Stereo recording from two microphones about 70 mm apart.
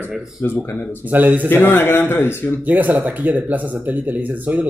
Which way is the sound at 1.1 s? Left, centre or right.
Right.